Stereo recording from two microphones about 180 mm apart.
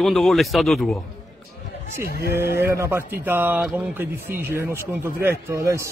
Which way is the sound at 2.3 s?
15° right (ahead or behind).